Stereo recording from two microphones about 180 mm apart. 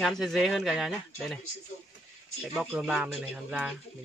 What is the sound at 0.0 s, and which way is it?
Speech, centre (ahead or behind).